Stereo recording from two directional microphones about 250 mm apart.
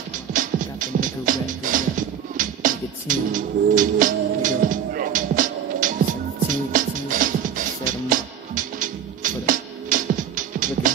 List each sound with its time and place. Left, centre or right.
0.3 s music: right